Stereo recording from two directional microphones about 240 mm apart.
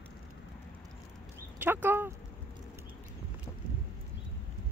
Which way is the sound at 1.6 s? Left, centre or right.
Centre.